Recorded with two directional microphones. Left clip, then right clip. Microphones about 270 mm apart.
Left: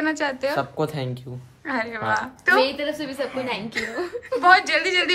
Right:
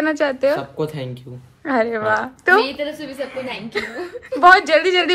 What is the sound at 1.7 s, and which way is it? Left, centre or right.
Speech, centre.